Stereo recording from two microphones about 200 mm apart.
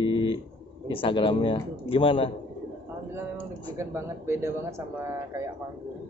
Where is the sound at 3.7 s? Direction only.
10° right (ahead or behind).